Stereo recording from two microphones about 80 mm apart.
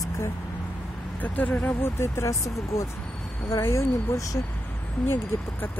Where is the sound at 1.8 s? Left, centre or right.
Left.